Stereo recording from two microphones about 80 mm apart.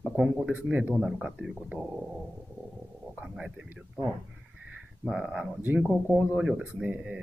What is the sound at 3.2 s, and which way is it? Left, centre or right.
Speech, centre.